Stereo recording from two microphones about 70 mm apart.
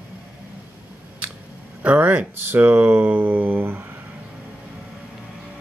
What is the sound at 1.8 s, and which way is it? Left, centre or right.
Speech, right.